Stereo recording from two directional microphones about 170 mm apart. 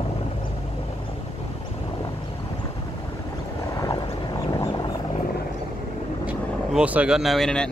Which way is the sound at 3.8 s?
25° left (ahead or behind).